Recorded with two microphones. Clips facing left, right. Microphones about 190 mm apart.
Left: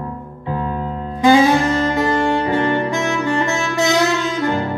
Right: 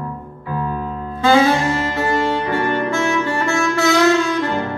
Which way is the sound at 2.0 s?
20° left (ahead or behind).